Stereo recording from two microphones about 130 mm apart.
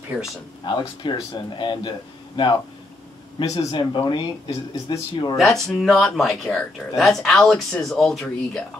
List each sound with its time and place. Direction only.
0.7 s a man's voice: 35° left (ahead or behind)
5.4 s speech: centre (ahead or behind)